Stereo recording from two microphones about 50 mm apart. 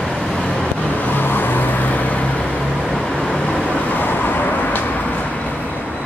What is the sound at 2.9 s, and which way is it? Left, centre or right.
Vehicle, centre.